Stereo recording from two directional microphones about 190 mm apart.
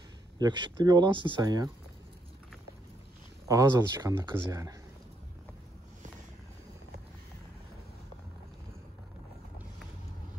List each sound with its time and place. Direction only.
0.4 s speech: 25° right (ahead or behind)
3.4 s speech: 20° right (ahead or behind)